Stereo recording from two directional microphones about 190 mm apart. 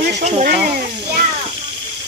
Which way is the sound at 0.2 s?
45° right (ahead or behind).